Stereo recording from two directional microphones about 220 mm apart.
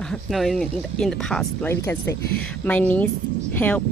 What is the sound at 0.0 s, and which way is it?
Speech, centre (ahead or behind).